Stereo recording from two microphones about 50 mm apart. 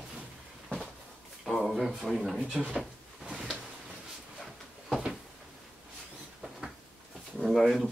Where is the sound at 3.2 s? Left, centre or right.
Centre.